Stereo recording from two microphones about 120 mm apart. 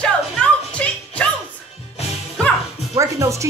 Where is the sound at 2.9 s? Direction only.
25° right (ahead or behind).